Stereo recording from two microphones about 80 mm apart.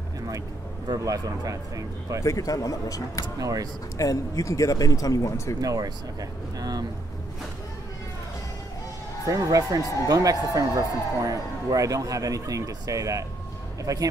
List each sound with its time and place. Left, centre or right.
0.8 s speech: right
2.2 s speech: left
3.3 s speech: right
4.0 s speech: left
5.6 s speech: right
9.2 s speech: right